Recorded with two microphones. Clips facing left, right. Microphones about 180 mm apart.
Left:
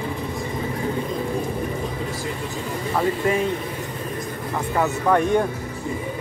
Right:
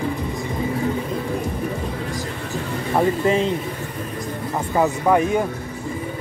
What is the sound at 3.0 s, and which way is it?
Speech, 25° right (ahead or behind).